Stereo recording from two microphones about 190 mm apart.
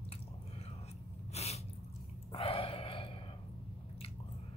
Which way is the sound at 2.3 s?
30° left (ahead or behind).